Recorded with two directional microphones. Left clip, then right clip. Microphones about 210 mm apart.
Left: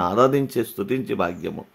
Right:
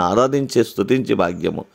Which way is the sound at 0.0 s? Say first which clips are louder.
Right 2 dB; 30° right (ahead or behind).